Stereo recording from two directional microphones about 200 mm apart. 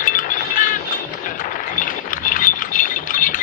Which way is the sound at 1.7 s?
40° left (ahead or behind).